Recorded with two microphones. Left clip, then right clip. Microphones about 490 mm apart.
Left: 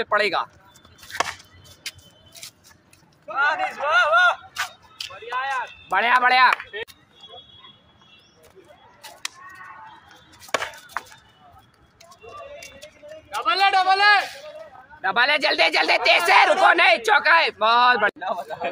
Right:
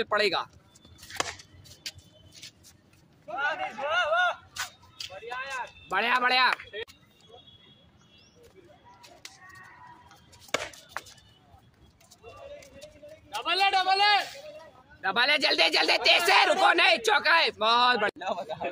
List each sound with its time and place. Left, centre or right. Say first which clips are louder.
0.0 s speech: left 5 dB; right
1.8 s vehicle: left 5 dB; right
3.3 s a sound: left 9 dB; right
5.9 s speech: left 7 dB; right
6.5 s a sound: left 7 dB; right
10.8 s chop: left 8 dB; right
12.5 s a sound: left 6 dB; right
15.0 s speech: left 5 dB; right
18.2 s a man's voice: left 5 dB; right